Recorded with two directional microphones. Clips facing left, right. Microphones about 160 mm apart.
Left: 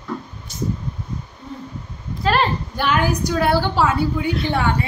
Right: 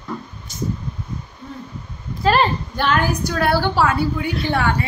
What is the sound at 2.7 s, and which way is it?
A woman's voice, 10° left (ahead or behind).